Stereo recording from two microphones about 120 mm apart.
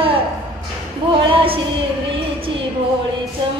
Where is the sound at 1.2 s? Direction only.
50° right (ahead or behind).